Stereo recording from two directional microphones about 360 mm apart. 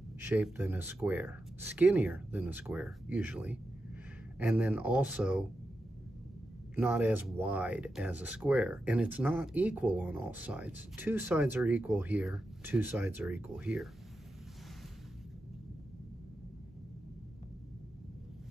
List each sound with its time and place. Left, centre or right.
0.2 s speech: centre
6.7 s speech: centre